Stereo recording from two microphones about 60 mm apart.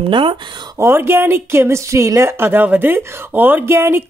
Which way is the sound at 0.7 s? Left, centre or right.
Right.